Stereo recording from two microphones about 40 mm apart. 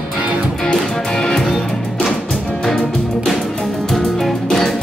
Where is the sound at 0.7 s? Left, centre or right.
Centre.